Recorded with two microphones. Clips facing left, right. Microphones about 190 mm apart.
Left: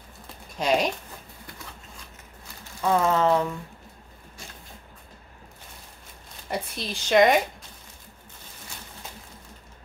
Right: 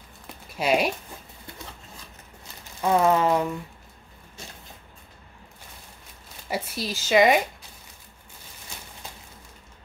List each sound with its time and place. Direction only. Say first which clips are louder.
0.6 s speech: right 1 dB; 10° right (ahead or behind)
2.8 s speech: right 1 dB; 15° right (ahead or behind)
6.5 s a woman's voice: right 1 dB; 5° right (ahead or behind)